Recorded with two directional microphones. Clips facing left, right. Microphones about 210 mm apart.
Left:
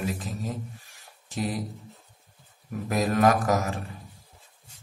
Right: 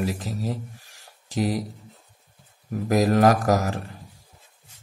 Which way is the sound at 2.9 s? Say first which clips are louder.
Right 4 dB; 40° right (ahead or behind).